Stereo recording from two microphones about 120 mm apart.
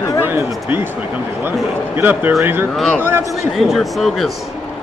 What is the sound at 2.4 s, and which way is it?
Speech, 20° right (ahead or behind).